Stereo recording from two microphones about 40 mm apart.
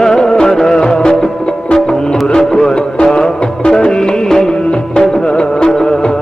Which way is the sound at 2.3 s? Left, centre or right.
Centre.